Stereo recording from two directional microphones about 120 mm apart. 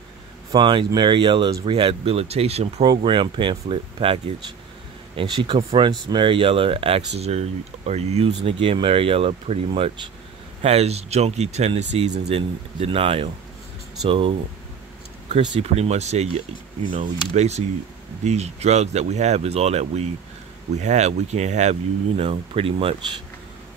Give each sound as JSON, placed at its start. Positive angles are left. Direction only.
{"t": 0.5, "sound": "speech", "side_deg": -40}
{"t": 3.0, "sound": "speech", "side_deg": -45}
{"t": 5.9, "sound": "speech", "side_deg": -35}
{"t": 6.2, "sound": "speech", "side_deg": -45}
{"t": 15.6, "sound": "speech", "side_deg": -60}